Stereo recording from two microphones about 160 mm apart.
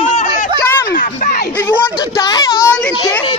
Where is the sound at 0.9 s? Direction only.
55° left (ahead or behind).